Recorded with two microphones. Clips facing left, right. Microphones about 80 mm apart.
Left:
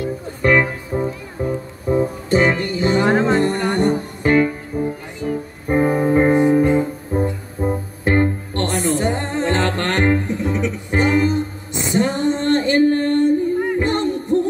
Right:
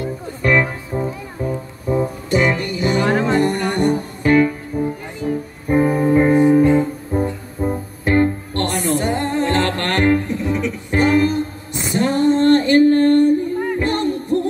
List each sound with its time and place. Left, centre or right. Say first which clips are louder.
0.4 s music: left 1 dB; left
5.2 s music: right 1 dB; centre
5.7 s music: right 1 dB; left